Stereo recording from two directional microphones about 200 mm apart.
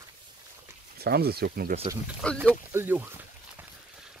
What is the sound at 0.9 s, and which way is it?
Speech, 50° right (ahead or behind).